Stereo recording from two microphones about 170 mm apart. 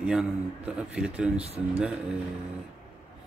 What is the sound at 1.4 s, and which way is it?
Speech, 40° right (ahead or behind).